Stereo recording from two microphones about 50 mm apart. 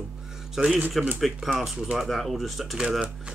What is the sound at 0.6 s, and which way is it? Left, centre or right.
Speech, centre.